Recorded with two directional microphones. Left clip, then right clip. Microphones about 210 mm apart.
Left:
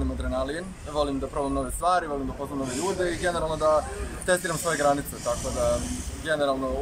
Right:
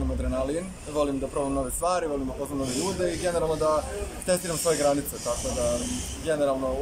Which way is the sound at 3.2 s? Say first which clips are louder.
Right 1 dB; 5° right (ahead or behind).